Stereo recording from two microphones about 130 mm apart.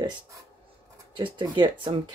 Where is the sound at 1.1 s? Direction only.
35° right (ahead or behind).